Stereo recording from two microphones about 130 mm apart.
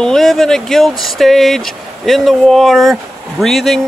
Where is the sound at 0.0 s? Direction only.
5° left (ahead or behind).